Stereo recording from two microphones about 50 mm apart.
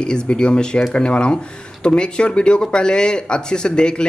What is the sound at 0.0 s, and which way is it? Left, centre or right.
Speech, centre.